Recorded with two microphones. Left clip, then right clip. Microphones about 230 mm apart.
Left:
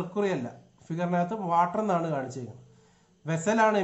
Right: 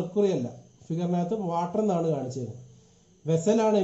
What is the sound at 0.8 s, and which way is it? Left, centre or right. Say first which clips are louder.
Speech: left 2 dB; centre.